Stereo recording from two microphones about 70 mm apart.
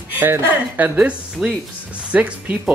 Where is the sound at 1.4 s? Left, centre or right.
Centre.